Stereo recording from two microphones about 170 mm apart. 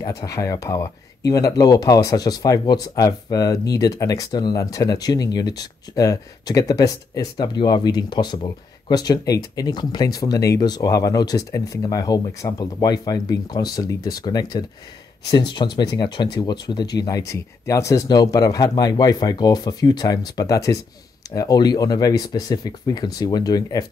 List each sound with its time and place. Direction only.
0.0 s speech: 20° left (ahead or behind)